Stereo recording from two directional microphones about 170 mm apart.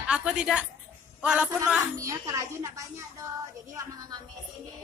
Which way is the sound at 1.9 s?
20° right (ahead or behind).